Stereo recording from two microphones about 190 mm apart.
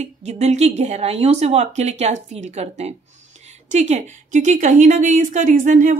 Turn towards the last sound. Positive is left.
turn(degrees=-45)  # may be behind; listen again after turning